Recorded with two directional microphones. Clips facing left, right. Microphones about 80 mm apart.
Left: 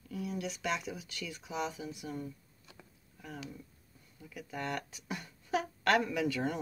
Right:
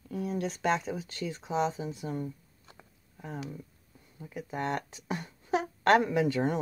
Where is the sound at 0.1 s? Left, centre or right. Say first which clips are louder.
Right 5 dB; right.